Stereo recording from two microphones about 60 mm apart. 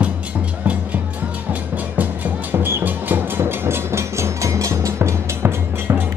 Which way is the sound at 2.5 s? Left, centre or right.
Right.